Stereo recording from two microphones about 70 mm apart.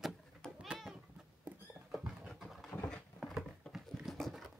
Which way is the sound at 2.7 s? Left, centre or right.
Centre.